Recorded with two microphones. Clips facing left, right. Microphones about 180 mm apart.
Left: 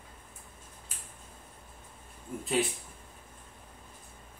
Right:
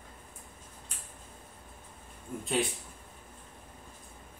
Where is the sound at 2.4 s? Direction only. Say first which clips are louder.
Left 1 dB; centre (ahead or behind).